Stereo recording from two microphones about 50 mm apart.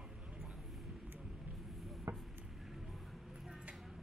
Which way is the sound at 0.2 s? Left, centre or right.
Right.